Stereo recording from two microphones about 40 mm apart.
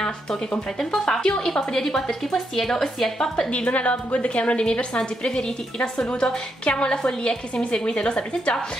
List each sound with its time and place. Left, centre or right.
0.0 s a woman's voice: centre
3.4 s a woman's voice: left